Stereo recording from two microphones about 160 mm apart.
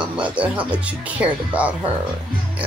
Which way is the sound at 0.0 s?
10° right (ahead or behind).